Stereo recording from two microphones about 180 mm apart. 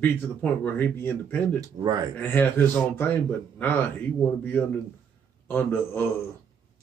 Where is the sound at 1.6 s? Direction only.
20° right (ahead or behind).